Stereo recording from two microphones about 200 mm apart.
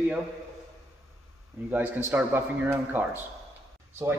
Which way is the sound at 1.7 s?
10° right (ahead or behind).